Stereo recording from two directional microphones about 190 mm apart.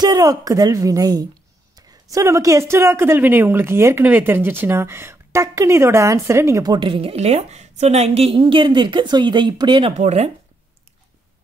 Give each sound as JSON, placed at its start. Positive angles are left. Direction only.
{"t": 0.0, "sound": "a woman's voice", "side_deg": -20}